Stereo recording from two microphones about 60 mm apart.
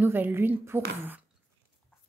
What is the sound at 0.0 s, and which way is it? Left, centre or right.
A woman's voice, right.